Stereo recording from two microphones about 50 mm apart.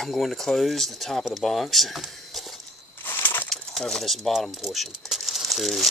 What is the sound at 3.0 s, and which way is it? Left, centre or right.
Crushing, left.